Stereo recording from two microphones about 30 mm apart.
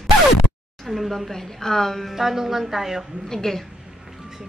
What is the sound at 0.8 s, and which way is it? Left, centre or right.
A woman's voice, centre.